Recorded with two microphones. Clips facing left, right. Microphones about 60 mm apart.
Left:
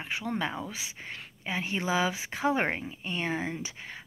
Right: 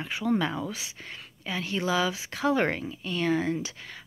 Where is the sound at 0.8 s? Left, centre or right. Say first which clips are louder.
Left 1 dB; left.